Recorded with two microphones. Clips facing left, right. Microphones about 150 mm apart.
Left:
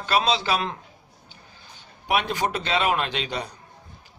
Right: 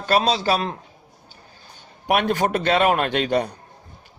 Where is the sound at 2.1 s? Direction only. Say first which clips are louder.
Right 5 dB; 55° right (ahead or behind).